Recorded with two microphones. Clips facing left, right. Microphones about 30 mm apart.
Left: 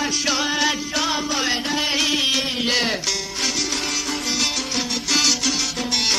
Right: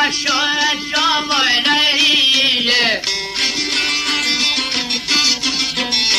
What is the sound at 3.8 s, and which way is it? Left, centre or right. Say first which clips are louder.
Music: right 8 dB; right.